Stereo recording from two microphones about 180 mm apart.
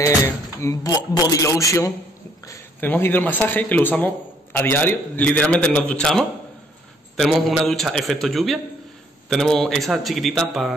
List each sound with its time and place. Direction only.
0.6 s a man's voice: 20° left (ahead or behind); by 10.7 s centre (ahead or behind)